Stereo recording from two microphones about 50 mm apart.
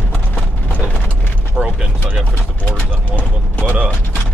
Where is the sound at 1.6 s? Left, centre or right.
Right.